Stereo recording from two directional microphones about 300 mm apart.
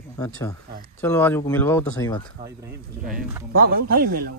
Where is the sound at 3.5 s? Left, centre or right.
Right.